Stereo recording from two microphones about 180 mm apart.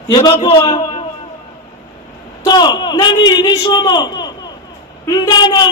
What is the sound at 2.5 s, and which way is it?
A man's voice, 25° left (ahead or behind).